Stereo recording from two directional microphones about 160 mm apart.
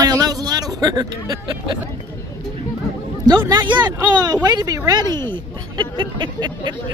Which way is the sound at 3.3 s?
25° right (ahead or behind).